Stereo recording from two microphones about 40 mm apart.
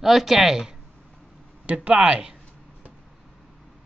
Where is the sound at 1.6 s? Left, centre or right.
Right.